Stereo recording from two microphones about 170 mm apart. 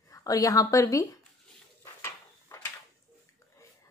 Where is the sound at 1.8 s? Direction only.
15° left (ahead or behind).